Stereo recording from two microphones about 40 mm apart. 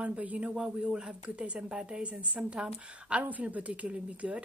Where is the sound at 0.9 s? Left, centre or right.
Right.